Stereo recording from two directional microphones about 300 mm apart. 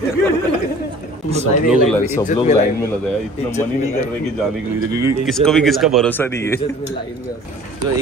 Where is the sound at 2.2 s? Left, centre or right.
Left.